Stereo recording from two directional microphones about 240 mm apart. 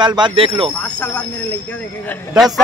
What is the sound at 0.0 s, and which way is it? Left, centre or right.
Speech, centre.